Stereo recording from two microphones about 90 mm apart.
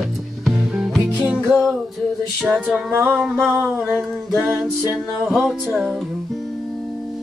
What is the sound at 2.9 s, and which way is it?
Music, 20° right (ahead or behind).